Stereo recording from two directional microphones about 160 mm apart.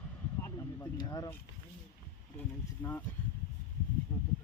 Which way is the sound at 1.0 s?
25° left (ahead or behind).